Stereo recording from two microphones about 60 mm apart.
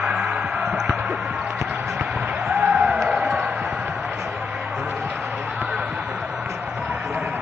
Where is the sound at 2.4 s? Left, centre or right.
Centre.